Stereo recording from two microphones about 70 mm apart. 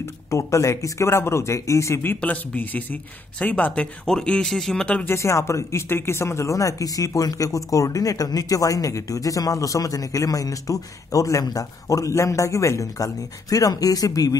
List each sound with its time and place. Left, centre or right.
0.0 s speech: left
2.0 s speech: left
5.0 s speech: left